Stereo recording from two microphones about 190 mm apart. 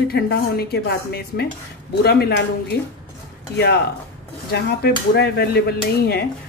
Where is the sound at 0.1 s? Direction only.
55° left (ahead or behind).